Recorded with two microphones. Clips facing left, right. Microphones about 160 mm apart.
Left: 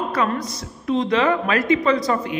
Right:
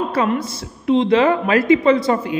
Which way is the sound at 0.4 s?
25° right (ahead or behind).